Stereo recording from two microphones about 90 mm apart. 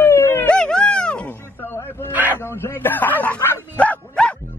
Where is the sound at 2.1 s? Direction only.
20° right (ahead or behind).